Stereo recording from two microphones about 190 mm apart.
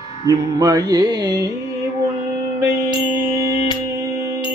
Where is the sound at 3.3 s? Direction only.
15° right (ahead or behind).